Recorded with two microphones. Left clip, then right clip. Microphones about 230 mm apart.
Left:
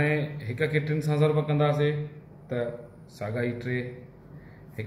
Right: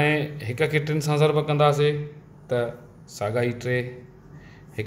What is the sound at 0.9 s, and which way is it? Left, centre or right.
A man's voice, right.